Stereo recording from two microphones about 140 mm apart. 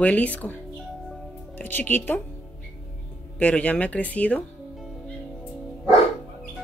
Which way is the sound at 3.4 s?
10° left (ahead or behind).